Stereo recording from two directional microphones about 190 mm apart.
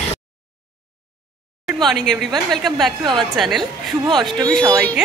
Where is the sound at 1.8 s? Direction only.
Centre (ahead or behind).